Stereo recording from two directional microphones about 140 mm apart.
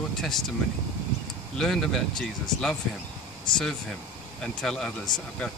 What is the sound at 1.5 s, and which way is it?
Speech, 5° left (ahead or behind).